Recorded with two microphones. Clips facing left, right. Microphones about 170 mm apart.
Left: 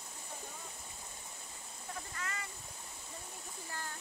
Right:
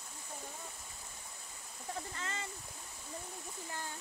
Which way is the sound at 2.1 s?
25° right (ahead or behind).